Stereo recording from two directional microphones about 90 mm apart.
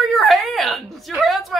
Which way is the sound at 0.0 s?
Centre (ahead or behind).